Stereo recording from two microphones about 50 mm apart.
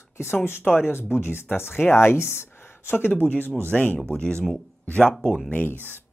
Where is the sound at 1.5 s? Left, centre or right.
Left.